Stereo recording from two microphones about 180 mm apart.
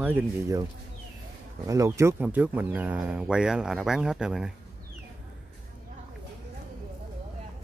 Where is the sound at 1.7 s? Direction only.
15° right (ahead or behind).